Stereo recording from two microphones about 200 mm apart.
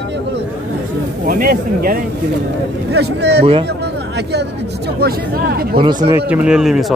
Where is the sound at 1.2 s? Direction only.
45° right (ahead or behind).